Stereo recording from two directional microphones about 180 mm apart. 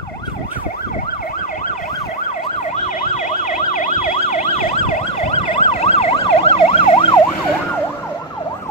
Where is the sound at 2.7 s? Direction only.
40° left (ahead or behind).